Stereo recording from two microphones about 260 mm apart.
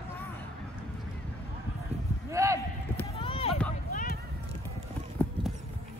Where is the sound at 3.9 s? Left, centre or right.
Left.